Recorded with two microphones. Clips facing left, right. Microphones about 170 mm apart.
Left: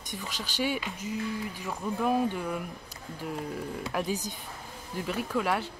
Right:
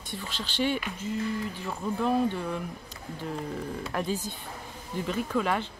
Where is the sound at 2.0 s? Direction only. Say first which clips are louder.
Right 1 dB; 10° left (ahead or behind).